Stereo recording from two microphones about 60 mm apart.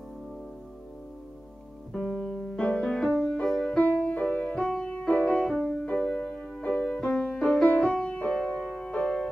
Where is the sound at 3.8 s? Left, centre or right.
Left.